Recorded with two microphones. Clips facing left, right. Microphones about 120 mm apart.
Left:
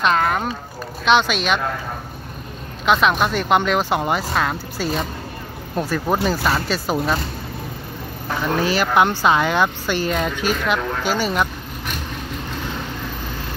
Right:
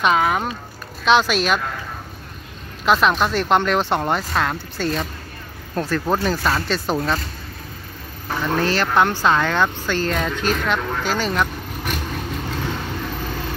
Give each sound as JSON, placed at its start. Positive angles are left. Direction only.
{"t": 0.0, "sound": "speech", "side_deg": -5}
{"t": 2.8, "sound": "speech", "side_deg": 0}
{"t": 8.5, "sound": "speech", "side_deg": 10}